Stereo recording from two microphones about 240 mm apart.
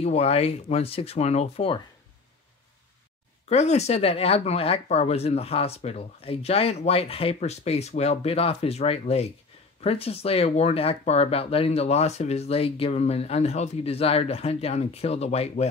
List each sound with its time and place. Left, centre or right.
0.0 s speech: left
3.4 s speech: left